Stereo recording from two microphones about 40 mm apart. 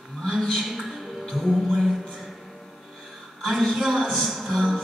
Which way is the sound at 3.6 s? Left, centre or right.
Centre.